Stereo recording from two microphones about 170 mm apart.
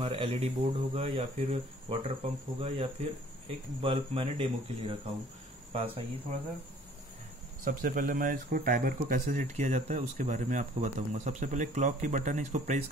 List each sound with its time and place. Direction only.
0.0 s speech: 35° right (ahead or behind)
7.6 s speech: 50° right (ahead or behind)